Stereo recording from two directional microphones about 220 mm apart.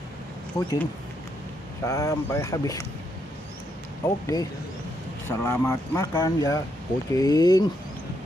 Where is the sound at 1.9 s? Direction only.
15° left (ahead or behind).